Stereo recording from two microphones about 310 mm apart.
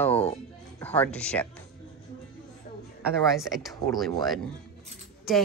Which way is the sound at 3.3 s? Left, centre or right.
Centre.